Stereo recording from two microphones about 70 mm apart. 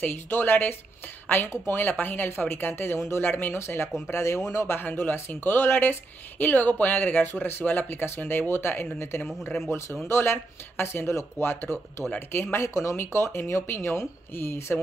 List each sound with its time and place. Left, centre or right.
0.0 s speech: left
4.7 s speech: left
12.6 s speech: left